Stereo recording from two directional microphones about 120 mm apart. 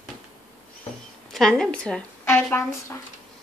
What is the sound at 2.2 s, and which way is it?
Speech, 20° left (ahead or behind).